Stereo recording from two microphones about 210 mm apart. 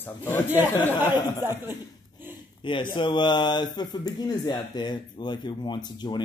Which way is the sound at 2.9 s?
20° left (ahead or behind).